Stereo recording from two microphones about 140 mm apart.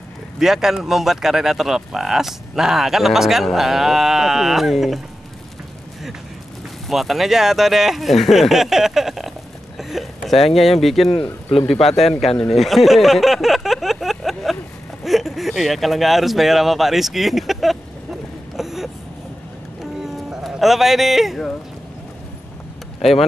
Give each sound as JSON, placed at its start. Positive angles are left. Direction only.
{"t": 0.4, "sound": "speech", "side_deg": 0}
{"t": 6.9, "sound": "speech", "side_deg": 0}
{"t": 9.8, "sound": "a sound", "side_deg": 0}
{"t": 10.5, "sound": "speech", "side_deg": 0}
{"t": 11.5, "sound": "a man's voice", "side_deg": 45}
{"t": 12.0, "sound": "speech", "side_deg": 0}
{"t": 18.6, "sound": "a sound", "side_deg": 0}